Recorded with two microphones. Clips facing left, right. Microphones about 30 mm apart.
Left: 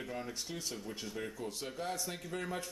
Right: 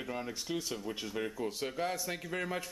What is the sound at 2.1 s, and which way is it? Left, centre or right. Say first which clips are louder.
Speech: right 3 dB; right.